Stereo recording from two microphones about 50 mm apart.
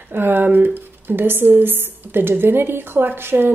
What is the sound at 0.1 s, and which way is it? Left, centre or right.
Speech, right.